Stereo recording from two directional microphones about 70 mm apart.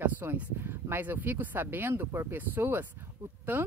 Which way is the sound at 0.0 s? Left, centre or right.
Right.